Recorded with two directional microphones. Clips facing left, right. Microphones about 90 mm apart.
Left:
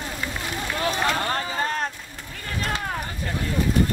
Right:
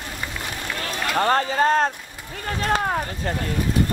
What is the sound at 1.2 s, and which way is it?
Speech, 40° right (ahead or behind).